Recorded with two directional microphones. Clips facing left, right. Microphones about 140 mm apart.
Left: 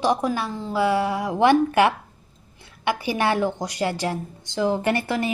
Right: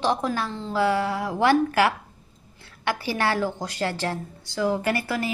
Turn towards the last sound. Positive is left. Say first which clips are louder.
# left 3 dB
turn(degrees=25)  # may be behind; listen again after turning